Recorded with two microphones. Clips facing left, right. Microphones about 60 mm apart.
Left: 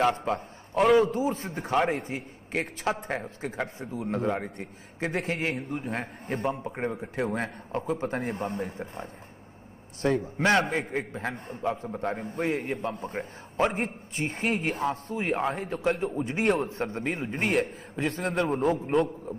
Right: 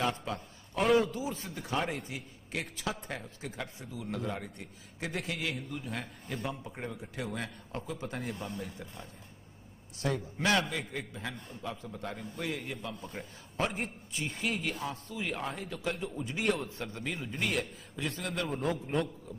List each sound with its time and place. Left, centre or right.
0.9 s a man's voice: left
18.6 s a man's voice: left